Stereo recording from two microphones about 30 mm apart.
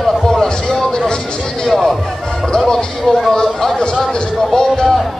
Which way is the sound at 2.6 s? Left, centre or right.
Left.